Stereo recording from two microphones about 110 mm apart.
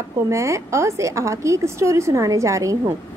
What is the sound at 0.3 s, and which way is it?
A woman's voice, 25° right (ahead or behind).